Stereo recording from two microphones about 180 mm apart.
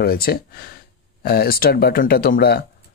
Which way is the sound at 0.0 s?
60° left (ahead or behind).